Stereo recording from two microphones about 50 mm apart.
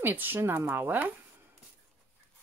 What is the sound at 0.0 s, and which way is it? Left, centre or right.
Speech, right.